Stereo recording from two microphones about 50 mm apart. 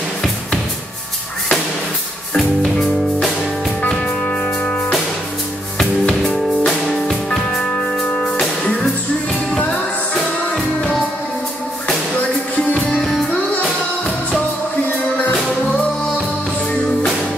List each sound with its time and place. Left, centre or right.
4.3 s music: left
5.8 s music: centre
9.6 s music: left
10.5 s music: centre